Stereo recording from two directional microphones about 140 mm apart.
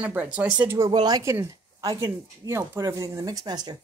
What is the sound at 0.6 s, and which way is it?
Speech, 25° right (ahead or behind).